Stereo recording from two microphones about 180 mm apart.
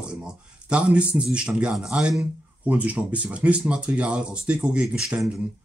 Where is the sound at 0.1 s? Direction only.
5° right (ahead or behind).